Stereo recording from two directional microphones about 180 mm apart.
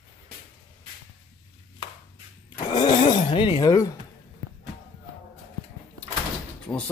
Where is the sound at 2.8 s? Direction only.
30° left (ahead or behind).